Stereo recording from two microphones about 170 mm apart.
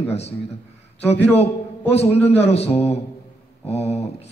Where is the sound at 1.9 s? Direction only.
35° left (ahead or behind).